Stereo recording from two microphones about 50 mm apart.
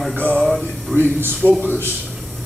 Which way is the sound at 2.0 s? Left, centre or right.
Centre.